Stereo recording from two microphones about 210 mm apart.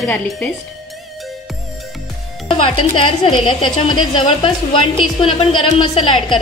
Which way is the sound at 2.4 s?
25° left (ahead or behind).